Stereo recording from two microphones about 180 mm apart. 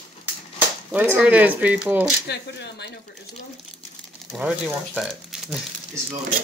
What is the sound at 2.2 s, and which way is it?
Speech, 70° left (ahead or behind).